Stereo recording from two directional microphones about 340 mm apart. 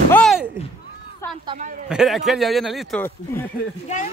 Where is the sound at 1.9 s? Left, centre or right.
Centre.